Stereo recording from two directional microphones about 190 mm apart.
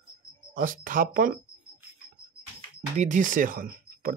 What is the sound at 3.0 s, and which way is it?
Speech, 40° right (ahead or behind).